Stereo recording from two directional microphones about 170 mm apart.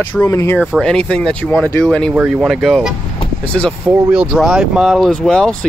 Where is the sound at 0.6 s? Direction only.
Centre (ahead or behind).